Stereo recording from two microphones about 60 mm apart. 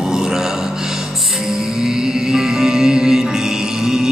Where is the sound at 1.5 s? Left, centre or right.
Centre.